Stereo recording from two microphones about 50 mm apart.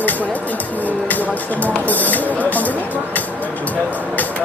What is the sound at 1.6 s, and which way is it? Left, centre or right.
Speech, left.